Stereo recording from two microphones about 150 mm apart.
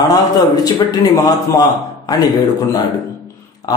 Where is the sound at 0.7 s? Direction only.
25° left (ahead or behind).